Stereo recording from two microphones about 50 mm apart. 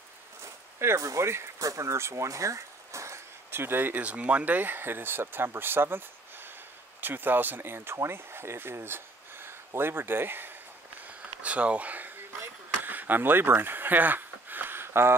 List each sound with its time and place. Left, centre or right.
0.4 s speech: right
3.5 s speech: right
3.9 s speech: right
11.4 s speech: right
12.8 s a sound: right